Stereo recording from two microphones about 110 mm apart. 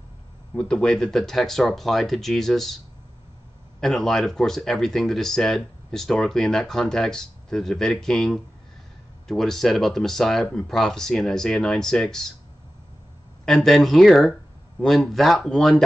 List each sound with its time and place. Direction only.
0.6 s speech: 5° left (ahead or behind)
3.8 s speech: 5° left (ahead or behind)
13.5 s speech: centre (ahead or behind)